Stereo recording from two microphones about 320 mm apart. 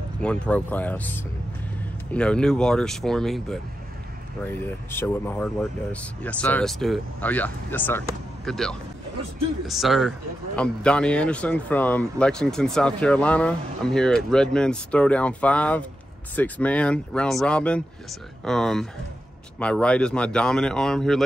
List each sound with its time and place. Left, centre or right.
0.2 s speech: centre